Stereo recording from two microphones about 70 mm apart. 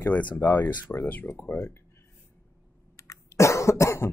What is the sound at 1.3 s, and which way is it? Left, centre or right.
Speech, left.